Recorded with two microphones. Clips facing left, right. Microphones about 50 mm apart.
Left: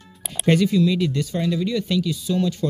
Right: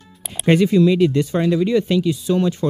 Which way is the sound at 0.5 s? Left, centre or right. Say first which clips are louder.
Right 4 dB; right.